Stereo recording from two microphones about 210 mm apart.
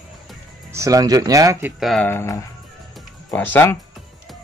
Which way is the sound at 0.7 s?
15° right (ahead or behind).